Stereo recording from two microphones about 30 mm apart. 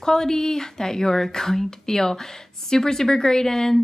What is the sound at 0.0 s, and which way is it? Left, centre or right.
A woman's voice, centre.